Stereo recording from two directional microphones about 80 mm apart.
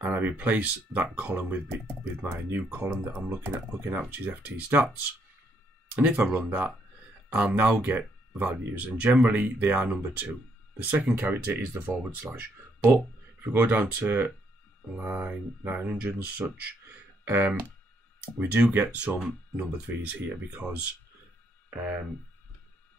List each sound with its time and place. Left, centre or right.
0.0 s speech: right
5.9 s speech: right
12.4 s a sound: right
13.6 s speech: right